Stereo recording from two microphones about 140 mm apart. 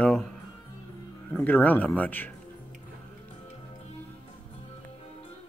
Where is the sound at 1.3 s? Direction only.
10° left (ahead or behind).